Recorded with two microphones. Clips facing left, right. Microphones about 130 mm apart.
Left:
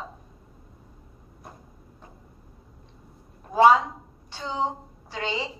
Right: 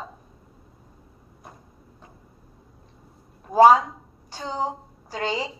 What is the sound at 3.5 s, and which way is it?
A woman's voice, 40° right (ahead or behind).